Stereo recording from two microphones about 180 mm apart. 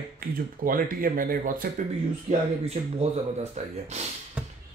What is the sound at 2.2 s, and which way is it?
Speech, 35° right (ahead or behind).